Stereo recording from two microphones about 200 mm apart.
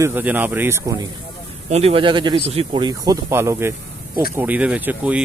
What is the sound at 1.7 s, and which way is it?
Speech, 30° right (ahead or behind).